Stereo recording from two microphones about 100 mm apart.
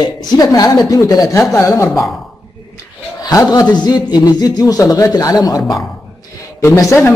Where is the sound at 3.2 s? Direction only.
35° left (ahead or behind).